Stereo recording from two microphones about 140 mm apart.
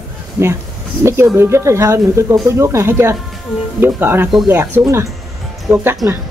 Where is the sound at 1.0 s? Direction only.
20° right (ahead or behind).